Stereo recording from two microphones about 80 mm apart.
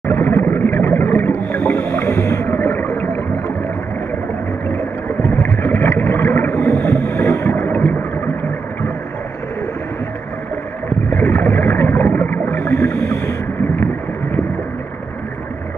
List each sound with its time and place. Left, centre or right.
0.0 s a sound: left
5.2 s boat: left
6.5 s boat: centre
7.1 s boat: left
7.5 s a sound: centre
11.1 s boat: left